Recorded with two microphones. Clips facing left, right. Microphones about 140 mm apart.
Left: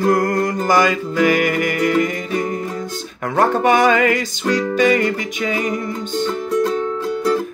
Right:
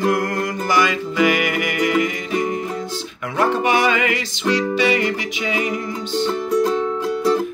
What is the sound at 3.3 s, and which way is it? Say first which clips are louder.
Music: left 3 dB; 45° left (ahead or behind).